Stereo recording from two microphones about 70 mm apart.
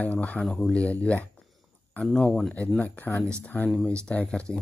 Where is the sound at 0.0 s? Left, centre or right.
Left.